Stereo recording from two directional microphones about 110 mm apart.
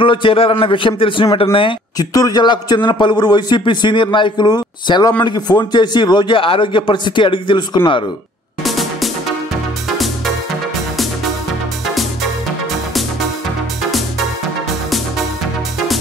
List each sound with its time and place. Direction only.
0.0 s a man's voice: 50° left (ahead or behind)
2.0 s a man's voice: 35° left (ahead or behind)
8.6 s music: centre (ahead or behind)
11.9 s music: centre (ahead or behind)